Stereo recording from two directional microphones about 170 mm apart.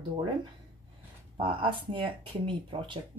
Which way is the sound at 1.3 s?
30° right (ahead or behind).